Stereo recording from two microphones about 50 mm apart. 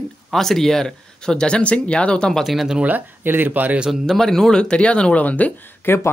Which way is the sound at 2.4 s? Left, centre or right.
Centre.